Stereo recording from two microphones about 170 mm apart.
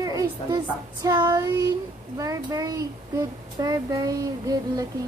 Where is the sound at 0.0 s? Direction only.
20° right (ahead or behind).